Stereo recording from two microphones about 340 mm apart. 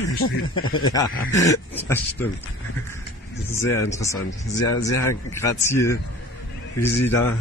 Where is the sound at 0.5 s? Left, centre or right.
Left.